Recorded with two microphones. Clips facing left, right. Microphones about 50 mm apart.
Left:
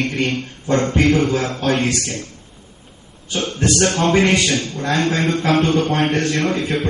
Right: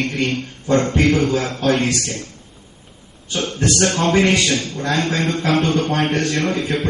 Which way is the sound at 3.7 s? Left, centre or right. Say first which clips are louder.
Left 1 dB; centre.